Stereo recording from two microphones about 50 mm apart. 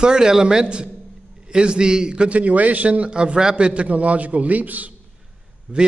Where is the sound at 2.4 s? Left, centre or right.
Right.